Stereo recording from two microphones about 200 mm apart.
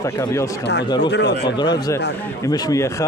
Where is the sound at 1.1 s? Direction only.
60° left (ahead or behind).